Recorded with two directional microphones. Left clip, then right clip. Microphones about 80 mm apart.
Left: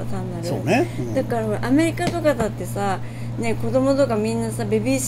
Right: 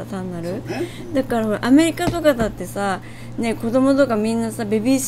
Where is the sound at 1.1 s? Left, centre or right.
Right.